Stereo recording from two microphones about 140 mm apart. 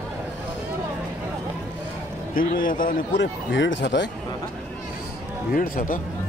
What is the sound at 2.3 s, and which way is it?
Speech, 85° left.